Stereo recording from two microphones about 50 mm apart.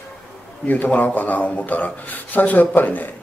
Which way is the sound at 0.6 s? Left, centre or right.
Left.